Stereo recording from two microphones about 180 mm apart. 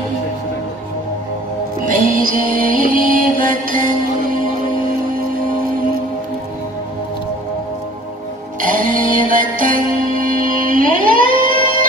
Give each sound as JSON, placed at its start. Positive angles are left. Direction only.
{"t": 1.9, "sound": "music", "side_deg": -50}
{"t": 8.5, "sound": "music", "side_deg": -50}